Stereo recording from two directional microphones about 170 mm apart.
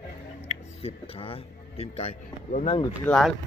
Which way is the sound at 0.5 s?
35° left (ahead or behind).